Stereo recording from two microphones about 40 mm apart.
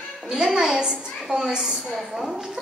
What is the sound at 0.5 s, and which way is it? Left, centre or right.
A woman's voice, centre.